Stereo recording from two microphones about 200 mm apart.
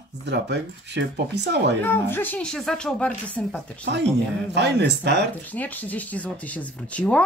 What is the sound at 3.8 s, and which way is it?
Speech, 60° right (ahead or behind).